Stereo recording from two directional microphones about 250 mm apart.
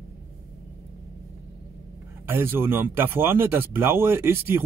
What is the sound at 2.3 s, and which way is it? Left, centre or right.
Speech, centre.